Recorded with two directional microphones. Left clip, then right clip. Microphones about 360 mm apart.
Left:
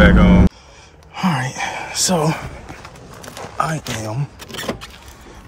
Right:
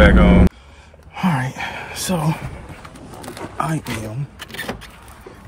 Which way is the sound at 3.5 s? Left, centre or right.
Centre.